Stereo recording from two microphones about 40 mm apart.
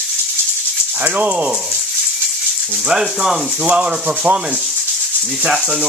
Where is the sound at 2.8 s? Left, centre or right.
Centre.